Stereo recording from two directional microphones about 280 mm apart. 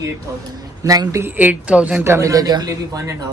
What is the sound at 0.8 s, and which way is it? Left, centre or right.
Speech, centre.